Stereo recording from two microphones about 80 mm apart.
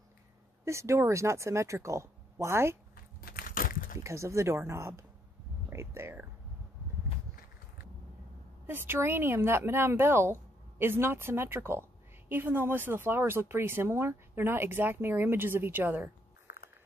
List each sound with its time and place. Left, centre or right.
0.7 s speech: right
4.0 s speech: right
8.6 s speech: right